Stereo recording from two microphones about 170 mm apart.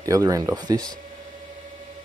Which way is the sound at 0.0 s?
20° right (ahead or behind).